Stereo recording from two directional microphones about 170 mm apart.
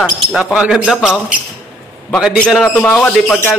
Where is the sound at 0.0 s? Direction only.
5° right (ahead or behind).